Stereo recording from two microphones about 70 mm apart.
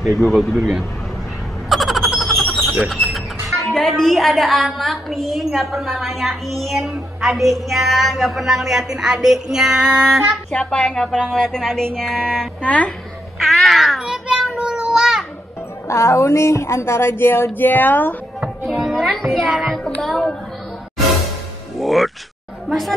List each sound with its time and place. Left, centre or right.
0.2 s speech: centre
1.7 s frog: centre
2.8 s speech: centre
10.5 s speech: centre
13.5 s a sound: centre
15.9 s a sound: left
18.4 s music: centre
19.2 s speech: centre
21.7 s music: centre
22.7 s speech: centre